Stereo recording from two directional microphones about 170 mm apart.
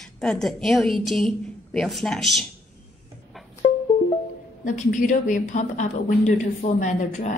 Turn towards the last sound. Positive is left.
turn(degrees=45)  # may be behind; listen again after turning